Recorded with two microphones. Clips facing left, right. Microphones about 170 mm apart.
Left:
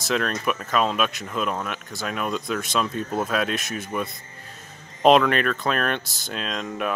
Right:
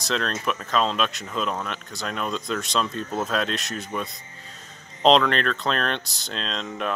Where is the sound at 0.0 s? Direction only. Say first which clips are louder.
Left 2 dB; 5° left (ahead or behind).